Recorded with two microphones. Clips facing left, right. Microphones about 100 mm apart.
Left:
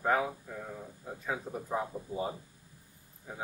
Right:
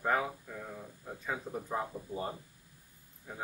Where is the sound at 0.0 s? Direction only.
5° left (ahead or behind).